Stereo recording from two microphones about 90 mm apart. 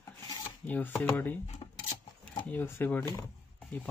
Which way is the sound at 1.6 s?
70° left (ahead or behind).